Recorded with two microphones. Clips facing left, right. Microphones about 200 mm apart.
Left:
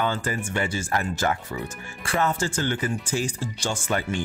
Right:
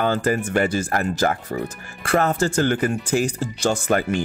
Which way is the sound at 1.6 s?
65° right (ahead or behind).